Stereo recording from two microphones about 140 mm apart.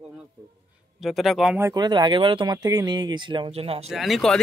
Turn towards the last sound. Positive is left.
turn(degrees=0)  # may be behind; listen again after turning